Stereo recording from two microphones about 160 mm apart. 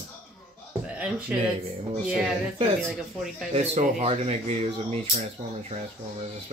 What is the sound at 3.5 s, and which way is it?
Speech, 40° right (ahead or behind).